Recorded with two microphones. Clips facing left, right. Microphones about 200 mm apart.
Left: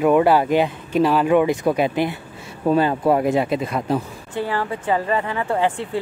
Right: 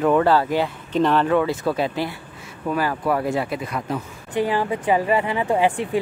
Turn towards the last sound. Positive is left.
turn(degrees=-15)  # may be behind; listen again after turning